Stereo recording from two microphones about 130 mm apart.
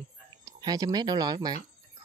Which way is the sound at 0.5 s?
30° right (ahead or behind).